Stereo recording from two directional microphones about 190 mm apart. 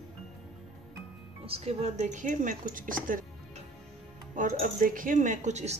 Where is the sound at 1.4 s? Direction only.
30° right (ahead or behind); by 3.3 s 45° right (ahead or behind).